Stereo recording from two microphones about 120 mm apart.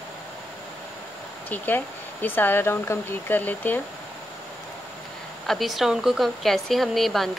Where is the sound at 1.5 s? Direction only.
15° left (ahead or behind).